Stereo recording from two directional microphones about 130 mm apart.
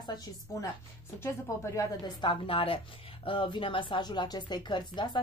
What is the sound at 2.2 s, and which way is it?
Speech, 40° left (ahead or behind).